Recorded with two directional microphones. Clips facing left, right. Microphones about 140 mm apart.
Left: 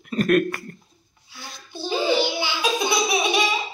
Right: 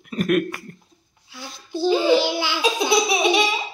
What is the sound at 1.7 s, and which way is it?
Speech, 90° right.